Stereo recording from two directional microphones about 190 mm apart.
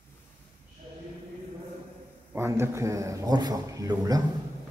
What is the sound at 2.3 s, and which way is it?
Speech, 15° right (ahead or behind).